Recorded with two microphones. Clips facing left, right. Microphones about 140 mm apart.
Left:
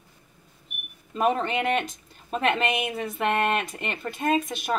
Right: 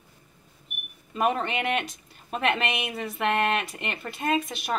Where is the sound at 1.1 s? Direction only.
35° left (ahead or behind).